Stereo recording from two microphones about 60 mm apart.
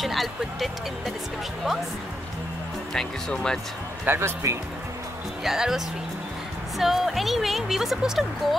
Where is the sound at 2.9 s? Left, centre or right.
Centre.